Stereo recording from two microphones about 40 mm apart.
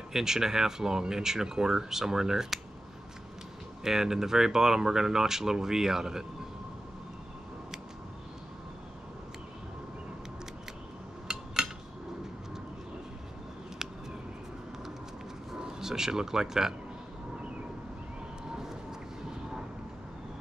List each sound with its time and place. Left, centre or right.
0.1 s speech: centre
3.8 s speech: centre
11.2 s a sound: centre
15.6 s speech: centre
18.6 s vehicle: centre